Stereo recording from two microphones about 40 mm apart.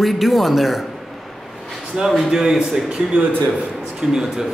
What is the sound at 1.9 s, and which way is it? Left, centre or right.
Speech, right.